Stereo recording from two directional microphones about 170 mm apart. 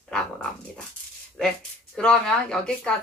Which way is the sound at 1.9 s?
5° left (ahead or behind).